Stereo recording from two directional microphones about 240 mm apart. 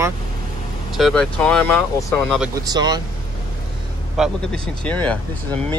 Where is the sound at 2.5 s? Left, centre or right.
Centre.